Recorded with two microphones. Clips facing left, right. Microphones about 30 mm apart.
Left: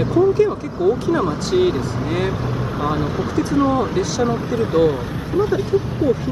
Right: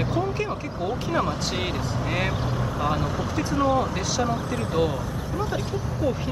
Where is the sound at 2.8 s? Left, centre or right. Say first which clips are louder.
Left 5 dB; centre.